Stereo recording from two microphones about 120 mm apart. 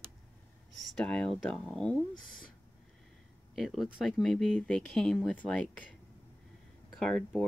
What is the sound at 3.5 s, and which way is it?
Speech, centre (ahead or behind).